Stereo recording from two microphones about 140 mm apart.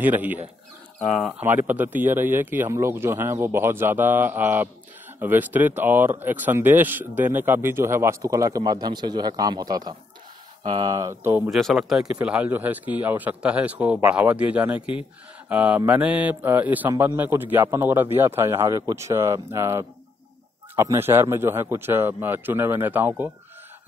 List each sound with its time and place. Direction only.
0.0 s speech: 10° right (ahead or behind)
1.0 s speech: centre (ahead or behind)
1.4 s speech: 15° right (ahead or behind)
11.2 s speech: 15° right (ahead or behind)
11.5 s speech: centre (ahead or behind)